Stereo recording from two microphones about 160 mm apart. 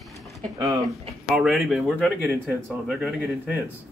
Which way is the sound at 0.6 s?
20° right (ahead or behind).